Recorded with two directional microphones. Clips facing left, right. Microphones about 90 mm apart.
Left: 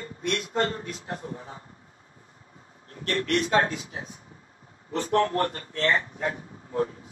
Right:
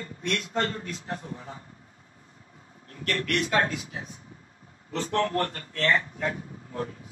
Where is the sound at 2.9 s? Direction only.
30° left (ahead or behind).